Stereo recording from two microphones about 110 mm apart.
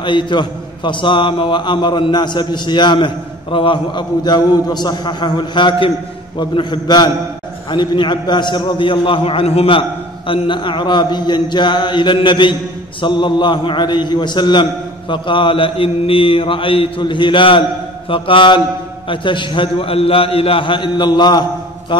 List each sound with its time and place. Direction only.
0.0 s a man's voice: 45° left (ahead or behind)